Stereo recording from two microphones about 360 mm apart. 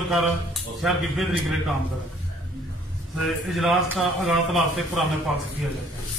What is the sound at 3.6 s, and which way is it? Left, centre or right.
Speech, centre.